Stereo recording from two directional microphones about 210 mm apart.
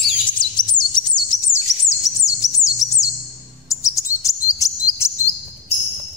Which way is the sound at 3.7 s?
15° left (ahead or behind).